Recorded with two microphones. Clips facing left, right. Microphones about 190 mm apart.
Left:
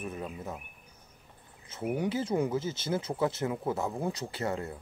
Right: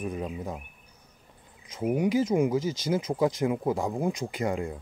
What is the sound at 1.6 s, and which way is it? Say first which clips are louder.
Speech: right 5 dB; 10° right (ahead or behind).